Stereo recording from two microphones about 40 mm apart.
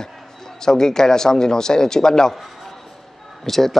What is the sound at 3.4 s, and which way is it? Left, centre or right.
Speech, centre.